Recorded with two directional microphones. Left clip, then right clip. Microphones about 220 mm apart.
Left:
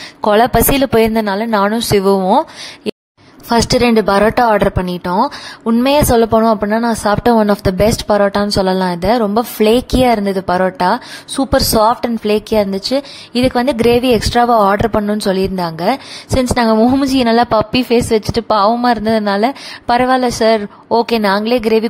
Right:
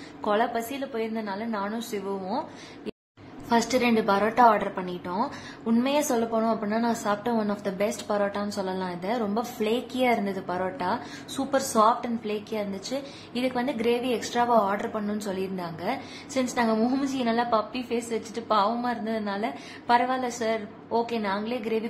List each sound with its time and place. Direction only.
0.2 s a woman's voice: 45° left (ahead or behind)